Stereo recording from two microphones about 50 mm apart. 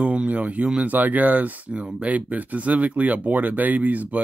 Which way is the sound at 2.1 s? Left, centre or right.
Right.